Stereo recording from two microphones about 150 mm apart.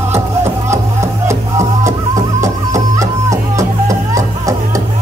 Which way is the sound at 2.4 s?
20° right (ahead or behind).